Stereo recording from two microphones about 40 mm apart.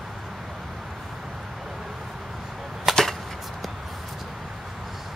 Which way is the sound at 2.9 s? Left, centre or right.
Centre.